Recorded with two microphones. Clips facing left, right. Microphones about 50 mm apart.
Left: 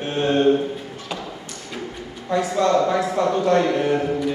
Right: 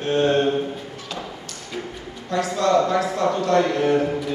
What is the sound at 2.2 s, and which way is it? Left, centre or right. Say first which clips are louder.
A man's voice: left 1 dB; centre.